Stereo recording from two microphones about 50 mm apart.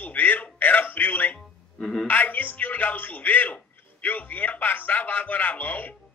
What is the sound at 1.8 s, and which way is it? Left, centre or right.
Speech, centre.